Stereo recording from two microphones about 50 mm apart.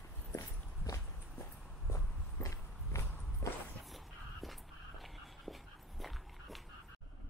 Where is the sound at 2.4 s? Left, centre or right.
Left.